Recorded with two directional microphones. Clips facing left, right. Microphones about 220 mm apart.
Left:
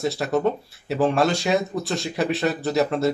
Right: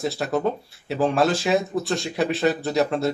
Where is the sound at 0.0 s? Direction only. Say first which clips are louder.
Left 2 dB; centre (ahead or behind).